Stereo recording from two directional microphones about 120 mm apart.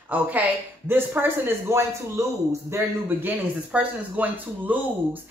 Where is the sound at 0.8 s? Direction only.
15° right (ahead or behind).